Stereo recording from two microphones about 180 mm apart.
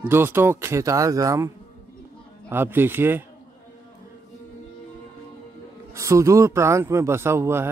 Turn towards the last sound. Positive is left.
turn(degrees=-15)  # may be behind; listen again after turning